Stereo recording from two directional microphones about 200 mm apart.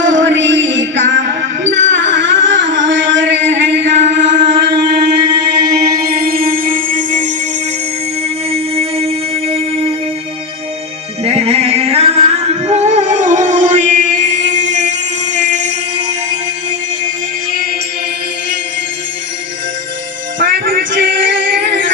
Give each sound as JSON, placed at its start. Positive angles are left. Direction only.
{"t": 0.0, "sound": "music", "side_deg": -65}
{"t": 4.2, "sound": "music", "side_deg": -40}
{"t": 4.7, "sound": "music", "side_deg": -20}
{"t": 6.0, "sound": "music", "side_deg": -50}
{"t": 8.5, "sound": "a sound", "side_deg": -30}
{"t": 11.2, "sound": "music", "side_deg": -30}
{"t": 20.5, "sound": "music", "side_deg": -45}
{"t": 21.3, "sound": "music", "side_deg": -60}